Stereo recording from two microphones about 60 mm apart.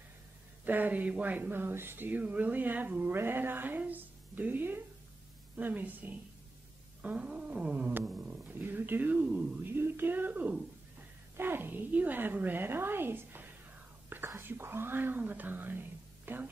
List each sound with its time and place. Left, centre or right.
0.7 s speech: right
7.0 s cat: centre
8.2 s speech: right
14.0 s whispering: right
14.4 s a woman's voice: right